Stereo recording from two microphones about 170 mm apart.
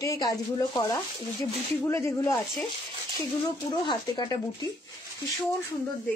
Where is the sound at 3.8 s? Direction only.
25° left (ahead or behind).